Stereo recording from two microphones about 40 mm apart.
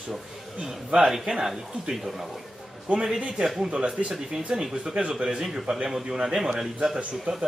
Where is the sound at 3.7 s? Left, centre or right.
Right.